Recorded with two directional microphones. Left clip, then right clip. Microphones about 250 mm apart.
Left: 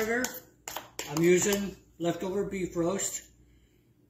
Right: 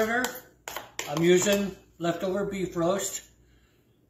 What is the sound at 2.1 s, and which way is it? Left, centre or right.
A man's voice, centre.